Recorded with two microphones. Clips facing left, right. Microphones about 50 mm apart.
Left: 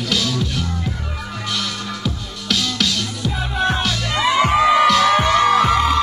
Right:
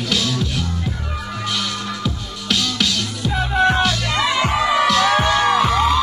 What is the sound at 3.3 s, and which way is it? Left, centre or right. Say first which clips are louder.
Music: right 5 dB; right.